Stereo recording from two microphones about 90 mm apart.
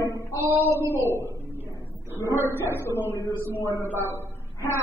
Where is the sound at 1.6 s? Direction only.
30° left (ahead or behind).